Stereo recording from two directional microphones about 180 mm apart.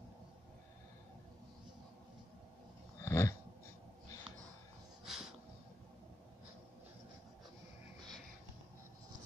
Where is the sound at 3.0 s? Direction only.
15° left (ahead or behind).